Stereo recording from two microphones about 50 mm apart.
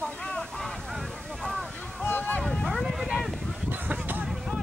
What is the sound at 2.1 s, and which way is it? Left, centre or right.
Speech, left.